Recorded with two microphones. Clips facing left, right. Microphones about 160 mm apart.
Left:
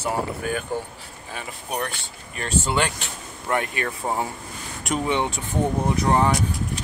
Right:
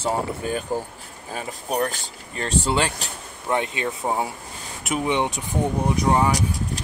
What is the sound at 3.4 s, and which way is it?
Speech, 20° right (ahead or behind).